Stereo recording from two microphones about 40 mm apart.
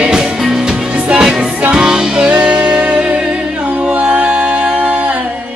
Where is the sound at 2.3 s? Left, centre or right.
Right.